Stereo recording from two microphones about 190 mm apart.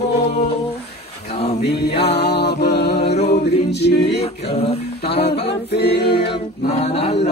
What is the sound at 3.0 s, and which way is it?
Music, 35° left (ahead or behind).